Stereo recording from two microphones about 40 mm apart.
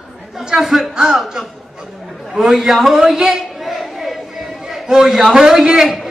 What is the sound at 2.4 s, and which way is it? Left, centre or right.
Speech, centre.